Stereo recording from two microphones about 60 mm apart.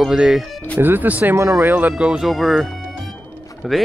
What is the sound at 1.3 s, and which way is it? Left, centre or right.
Speech, right.